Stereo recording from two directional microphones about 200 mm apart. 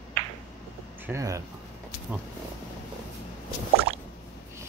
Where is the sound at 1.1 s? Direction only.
15° right (ahead or behind).